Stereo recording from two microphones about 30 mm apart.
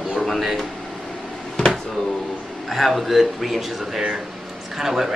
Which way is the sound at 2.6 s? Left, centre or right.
Centre.